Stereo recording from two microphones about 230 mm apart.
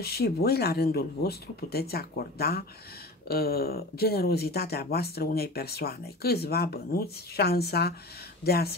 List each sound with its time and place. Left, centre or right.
0.0 s speech: left